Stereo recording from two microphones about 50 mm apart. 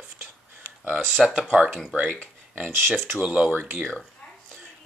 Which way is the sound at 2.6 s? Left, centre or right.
Right.